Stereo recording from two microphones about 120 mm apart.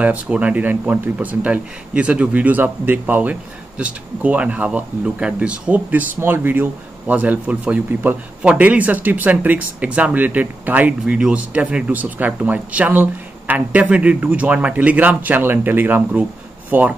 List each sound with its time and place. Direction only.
0.0 s speech: 10° right (ahead or behind)